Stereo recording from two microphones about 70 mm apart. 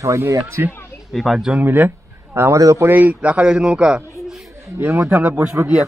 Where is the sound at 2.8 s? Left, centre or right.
Right.